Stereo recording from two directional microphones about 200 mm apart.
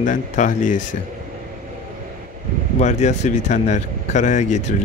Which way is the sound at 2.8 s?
35° left (ahead or behind).